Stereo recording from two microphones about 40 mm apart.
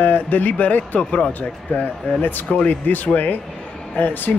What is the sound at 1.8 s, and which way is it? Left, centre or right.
Speech, left.